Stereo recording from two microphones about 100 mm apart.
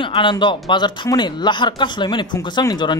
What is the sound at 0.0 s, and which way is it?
A man's voice, 55° left (ahead or behind).